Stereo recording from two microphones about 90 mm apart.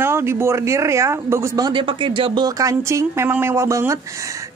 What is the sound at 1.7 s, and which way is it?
Speech, 70° right (ahead or behind).